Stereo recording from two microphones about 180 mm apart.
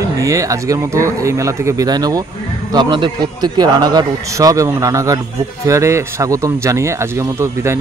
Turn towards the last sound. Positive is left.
turn(degrees=-15)  # may be behind; listen again after turning